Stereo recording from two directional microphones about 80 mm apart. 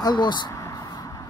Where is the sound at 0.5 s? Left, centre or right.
Left.